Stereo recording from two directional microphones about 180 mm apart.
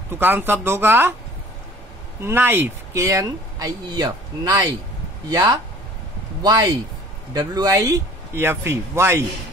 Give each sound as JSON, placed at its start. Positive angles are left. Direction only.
{"t": 0.1, "sound": "speech", "side_deg": -10}
{"t": 2.2, "sound": "speech", "side_deg": -10}